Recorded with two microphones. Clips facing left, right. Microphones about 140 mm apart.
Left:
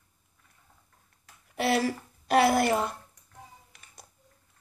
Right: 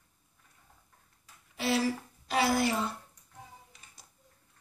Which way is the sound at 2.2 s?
60° left (ahead or behind).